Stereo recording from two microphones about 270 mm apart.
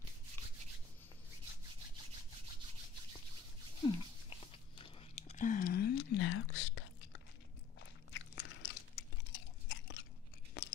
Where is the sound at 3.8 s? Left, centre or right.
Centre; by 7.2 s left.